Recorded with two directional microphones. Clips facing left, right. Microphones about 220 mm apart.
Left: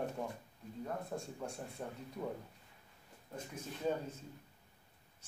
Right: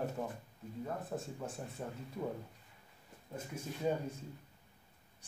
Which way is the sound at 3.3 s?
10° right (ahead or behind).